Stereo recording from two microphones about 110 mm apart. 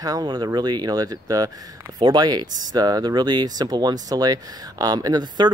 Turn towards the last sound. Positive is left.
turn(degrees=-35)  # may be behind; listen again after turning